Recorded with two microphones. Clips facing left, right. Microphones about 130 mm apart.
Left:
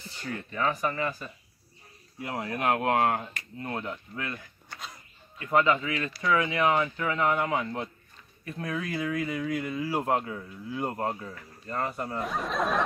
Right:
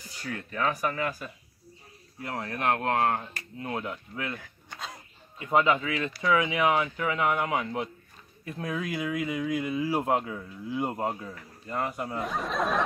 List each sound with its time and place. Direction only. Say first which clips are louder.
0.0 s a sound: left 1 dB; 10° right (ahead or behind)
0.3 s speech: even; centre (ahead or behind)
2.2 s speech: left 1 dB; 10° left (ahead or behind)
3.5 s speech: right 1 dB; 5° right (ahead or behind)
4.2 s speech: right 1 dB; 15° right (ahead or behind); by 6.0 s centre (ahead or behind)
6.0 s speech: right 1 dB; 15° right (ahead or behind); by 12.8 s centre (ahead or behind)